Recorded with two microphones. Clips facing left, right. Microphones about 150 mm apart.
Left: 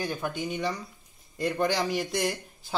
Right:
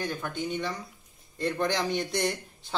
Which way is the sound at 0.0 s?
10° left (ahead or behind).